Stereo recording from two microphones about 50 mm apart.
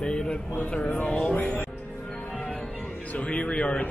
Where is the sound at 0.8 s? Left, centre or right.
Left.